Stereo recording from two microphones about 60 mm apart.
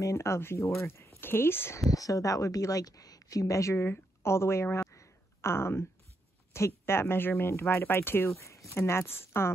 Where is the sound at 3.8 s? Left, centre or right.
Left.